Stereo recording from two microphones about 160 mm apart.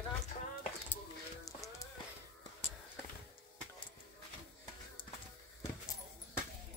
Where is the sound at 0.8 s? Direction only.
15° left (ahead or behind).